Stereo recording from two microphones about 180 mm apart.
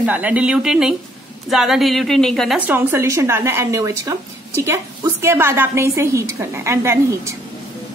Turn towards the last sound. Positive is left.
turn(degrees=-15)  # may be behind; listen again after turning